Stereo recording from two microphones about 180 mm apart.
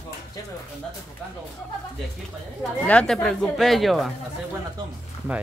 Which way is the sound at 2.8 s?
5° left (ahead or behind).